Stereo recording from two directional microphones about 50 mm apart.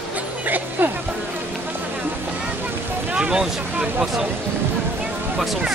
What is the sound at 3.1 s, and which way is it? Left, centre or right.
Vehicle, centre.